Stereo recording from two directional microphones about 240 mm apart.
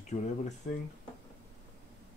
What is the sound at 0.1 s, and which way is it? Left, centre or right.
Speech, left.